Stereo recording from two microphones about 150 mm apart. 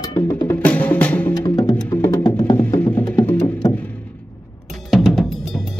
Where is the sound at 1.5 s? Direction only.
25° left (ahead or behind).